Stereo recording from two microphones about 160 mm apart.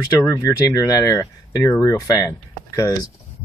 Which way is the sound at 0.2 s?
15° left (ahead or behind).